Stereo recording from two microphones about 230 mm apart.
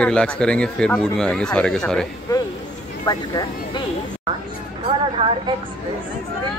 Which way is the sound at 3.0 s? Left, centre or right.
Centre.